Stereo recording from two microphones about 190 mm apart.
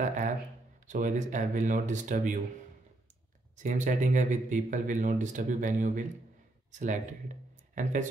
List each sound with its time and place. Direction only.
0.0 s speech: 40° right (ahead or behind)
3.6 s speech: 40° right (ahead or behind)